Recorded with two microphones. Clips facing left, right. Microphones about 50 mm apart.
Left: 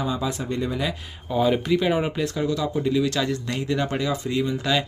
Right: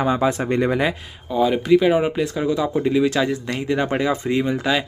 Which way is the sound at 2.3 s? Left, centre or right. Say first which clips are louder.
Right 4 dB; right.